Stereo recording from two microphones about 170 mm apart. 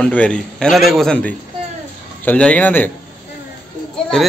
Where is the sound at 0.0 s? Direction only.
5° left (ahead or behind).